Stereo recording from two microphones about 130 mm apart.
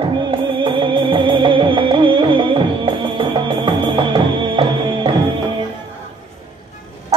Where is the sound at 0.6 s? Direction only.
40° right (ahead or behind).